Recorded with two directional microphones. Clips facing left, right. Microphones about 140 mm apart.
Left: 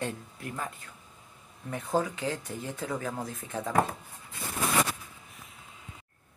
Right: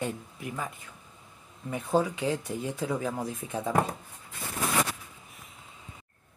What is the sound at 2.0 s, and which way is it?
Speech, 10° right (ahead or behind).